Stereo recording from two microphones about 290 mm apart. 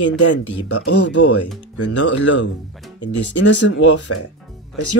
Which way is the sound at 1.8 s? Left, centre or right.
Left.